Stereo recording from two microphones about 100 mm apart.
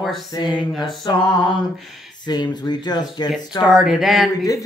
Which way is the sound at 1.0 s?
45° left (ahead or behind).